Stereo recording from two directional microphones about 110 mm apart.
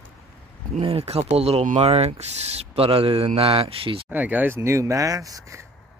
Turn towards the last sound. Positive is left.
turn(degrees=-30)  # may be behind; listen again after turning